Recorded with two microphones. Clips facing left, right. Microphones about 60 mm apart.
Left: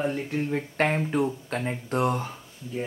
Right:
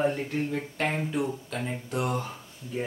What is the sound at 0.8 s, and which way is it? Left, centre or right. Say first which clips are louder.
Speech: left 5 dB; left.